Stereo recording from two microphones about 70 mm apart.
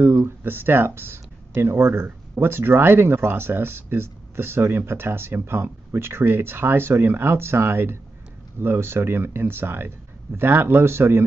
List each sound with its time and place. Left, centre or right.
0.0 s speech: right